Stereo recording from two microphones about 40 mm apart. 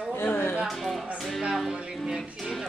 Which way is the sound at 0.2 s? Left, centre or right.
Left.